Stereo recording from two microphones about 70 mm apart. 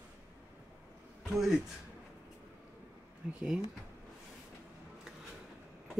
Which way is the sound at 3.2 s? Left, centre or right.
Centre.